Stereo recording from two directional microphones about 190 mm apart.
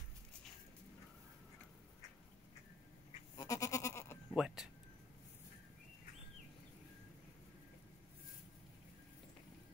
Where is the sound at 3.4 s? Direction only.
15° left (ahead or behind).